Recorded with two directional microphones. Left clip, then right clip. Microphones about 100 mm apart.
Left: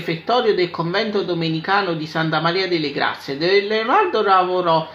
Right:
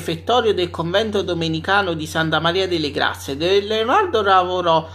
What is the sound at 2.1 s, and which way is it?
Speech, 25° right (ahead or behind).